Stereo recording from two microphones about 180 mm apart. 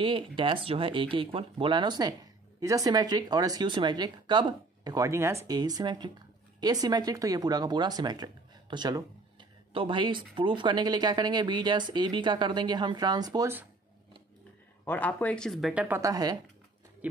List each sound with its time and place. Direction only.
0.0 s speech: 30° right (ahead or behind)
14.9 s speech: 10° left (ahead or behind); by 16.0 s 5° right (ahead or behind)
16.0 s speech: 20° right (ahead or behind)
17.0 s speech: 10° right (ahead or behind)